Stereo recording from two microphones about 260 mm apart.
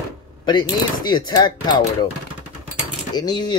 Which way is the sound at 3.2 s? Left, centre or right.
Centre.